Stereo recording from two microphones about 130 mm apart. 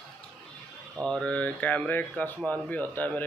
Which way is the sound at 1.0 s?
5° left (ahead or behind).